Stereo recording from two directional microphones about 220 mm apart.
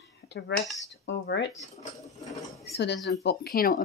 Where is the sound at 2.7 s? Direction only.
50° left (ahead or behind).